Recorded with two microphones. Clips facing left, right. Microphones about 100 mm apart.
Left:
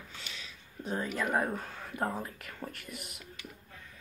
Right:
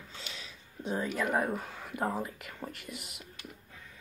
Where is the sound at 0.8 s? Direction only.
10° right (ahead or behind).